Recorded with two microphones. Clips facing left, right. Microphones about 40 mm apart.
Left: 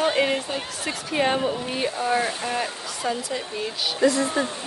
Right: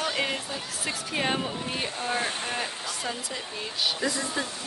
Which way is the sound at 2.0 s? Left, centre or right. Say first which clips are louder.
Left 7 dB; left.